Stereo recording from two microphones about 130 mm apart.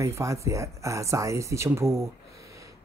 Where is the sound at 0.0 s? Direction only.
25° right (ahead or behind).